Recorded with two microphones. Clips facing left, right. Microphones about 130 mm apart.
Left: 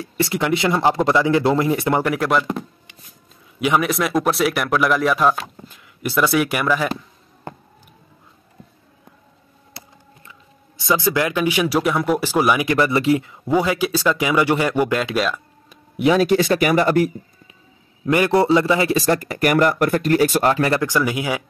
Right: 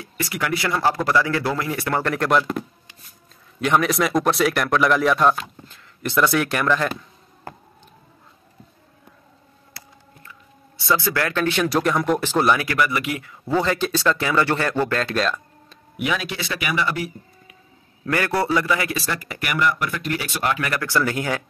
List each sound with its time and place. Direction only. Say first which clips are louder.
0.0 s a man's voice: left 6 dB; 25° left (ahead or behind)
2.1 s speech: even; centre (ahead or behind)
3.5 s speech: left 1 dB; 5° left (ahead or behind)
9.8 s a sound: left 4 dB; 25° left (ahead or behind)
10.8 s speech: left 3 dB; 15° left (ahead or behind)
12.6 s speech: left 6 dB; 30° left (ahead or behind); by 15.8 s 5° left (ahead or behind)
16.0 s speech: left 10 dB; 35° left (ahead or behind)
18.0 s a man's voice: left 6 dB; 20° left (ahead or behind)
18.9 s speech: left 9 dB; 40° left (ahead or behind)
20.8 s speech: left 2 dB; 15° left (ahead or behind)